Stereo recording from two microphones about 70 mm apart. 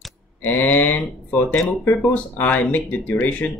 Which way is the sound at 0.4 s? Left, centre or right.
Left.